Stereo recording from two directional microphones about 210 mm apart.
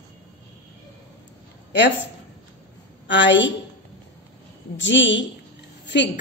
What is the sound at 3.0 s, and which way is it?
Speech, 60° left (ahead or behind).